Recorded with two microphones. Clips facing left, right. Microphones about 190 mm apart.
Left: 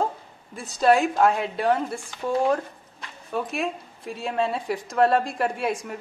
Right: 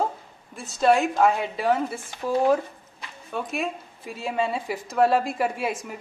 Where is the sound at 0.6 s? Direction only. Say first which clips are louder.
Left 1 dB; centre (ahead or behind).